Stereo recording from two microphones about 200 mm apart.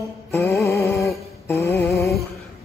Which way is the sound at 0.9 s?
Centre (ahead or behind).